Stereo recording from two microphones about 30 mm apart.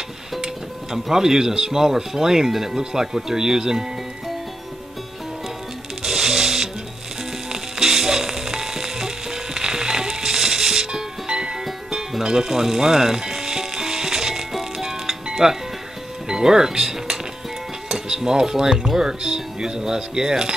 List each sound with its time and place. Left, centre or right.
0.9 s speech: centre
6.0 s music: centre
7.8 s music: centre
12.2 s speech: right
12.4 s music: centre
18.0 s speech: right